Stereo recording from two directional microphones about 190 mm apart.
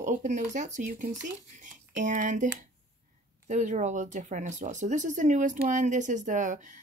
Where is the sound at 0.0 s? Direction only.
40° right (ahead or behind).